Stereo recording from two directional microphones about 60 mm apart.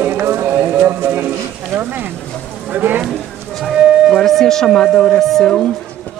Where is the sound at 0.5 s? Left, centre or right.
Right.